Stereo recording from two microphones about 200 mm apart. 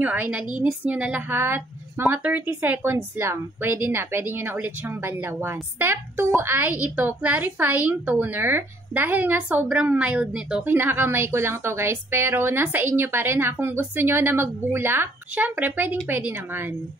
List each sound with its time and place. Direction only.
0.0 s a woman's voice: 5° right (ahead or behind)